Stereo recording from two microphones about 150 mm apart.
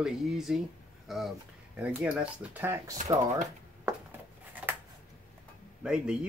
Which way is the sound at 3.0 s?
55° right (ahead or behind).